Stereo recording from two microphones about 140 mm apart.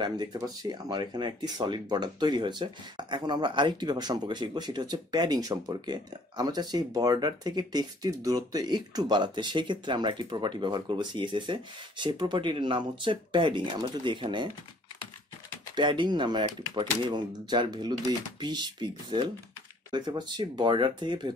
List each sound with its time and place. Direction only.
0.0 s speech: 30° right (ahead or behind)
15.7 s speech: 35° right (ahead or behind)